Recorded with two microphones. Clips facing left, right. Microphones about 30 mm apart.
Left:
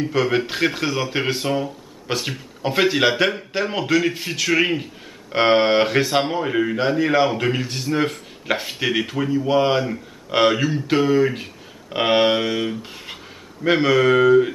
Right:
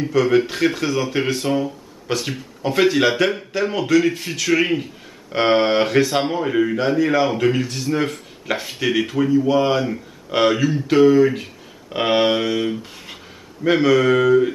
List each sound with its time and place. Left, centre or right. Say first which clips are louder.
0.1 s speech: right 7 dB; centre